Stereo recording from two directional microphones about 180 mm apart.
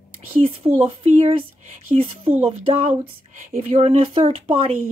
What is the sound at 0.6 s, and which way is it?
Speech, 35° right (ahead or behind).